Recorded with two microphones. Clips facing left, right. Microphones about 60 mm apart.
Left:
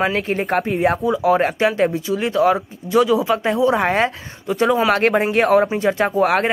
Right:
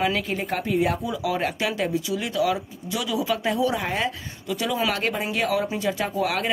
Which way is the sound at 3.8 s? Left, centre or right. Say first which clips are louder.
Left 9 dB; left.